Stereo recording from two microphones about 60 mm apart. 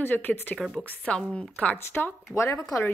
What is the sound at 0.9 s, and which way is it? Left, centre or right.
Speech, left.